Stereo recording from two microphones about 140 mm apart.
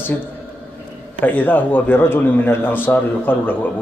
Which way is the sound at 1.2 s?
10° left (ahead or behind).